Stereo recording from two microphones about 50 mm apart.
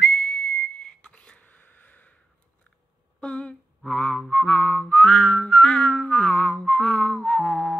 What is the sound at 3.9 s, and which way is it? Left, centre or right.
Music, centre.